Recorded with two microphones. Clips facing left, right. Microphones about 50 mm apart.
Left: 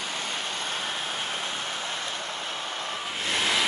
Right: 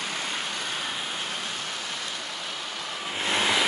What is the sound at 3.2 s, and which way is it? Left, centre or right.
Vehicle, centre.